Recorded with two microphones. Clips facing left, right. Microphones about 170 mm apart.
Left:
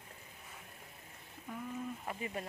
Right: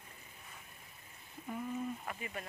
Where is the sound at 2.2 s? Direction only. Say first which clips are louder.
Left 3 dB; 30° left (ahead or behind).